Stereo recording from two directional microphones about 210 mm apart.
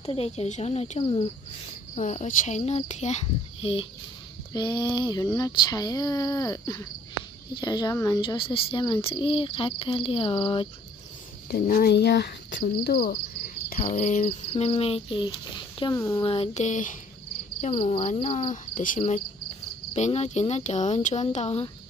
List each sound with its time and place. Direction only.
0.0 s speech: 30° left (ahead or behind)
11.5 s speech: 45° left (ahead or behind)
13.8 s speech: 35° left (ahead or behind)